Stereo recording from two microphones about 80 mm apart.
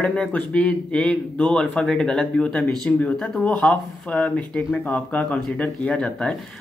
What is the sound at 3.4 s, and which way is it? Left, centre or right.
Speech, centre.